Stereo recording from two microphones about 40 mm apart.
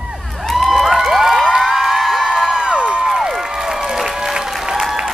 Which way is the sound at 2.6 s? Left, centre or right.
Centre.